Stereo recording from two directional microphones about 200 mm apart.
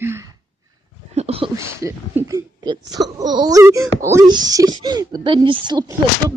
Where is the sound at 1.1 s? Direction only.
30° right (ahead or behind).